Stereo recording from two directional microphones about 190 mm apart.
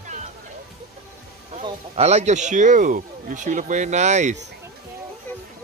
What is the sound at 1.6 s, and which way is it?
Speech, 35° right (ahead or behind).